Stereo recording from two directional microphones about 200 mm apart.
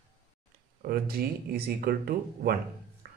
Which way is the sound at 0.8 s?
50° right (ahead or behind).